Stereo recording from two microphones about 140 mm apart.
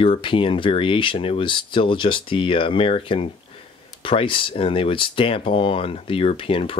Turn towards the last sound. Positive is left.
turn(degrees=40)  # may be behind; listen again after turning